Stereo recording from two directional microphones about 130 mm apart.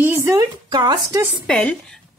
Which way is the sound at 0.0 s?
20° right (ahead or behind).